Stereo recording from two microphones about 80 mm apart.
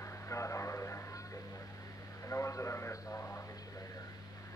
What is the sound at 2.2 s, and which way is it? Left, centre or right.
Radio, left.